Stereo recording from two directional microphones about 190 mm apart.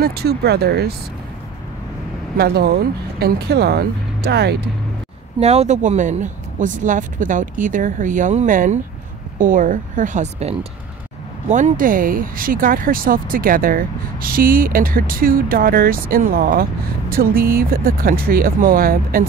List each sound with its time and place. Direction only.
0.0 s speech: 55° right (ahead or behind)
2.3 s speech: 55° right (ahead or behind)
5.4 s speech: 35° right (ahead or behind); by 19.2 s 50° right (ahead or behind)